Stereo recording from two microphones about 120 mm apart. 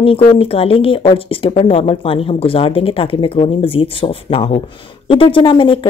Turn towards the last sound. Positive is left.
turn(degrees=45)  # may be behind; listen again after turning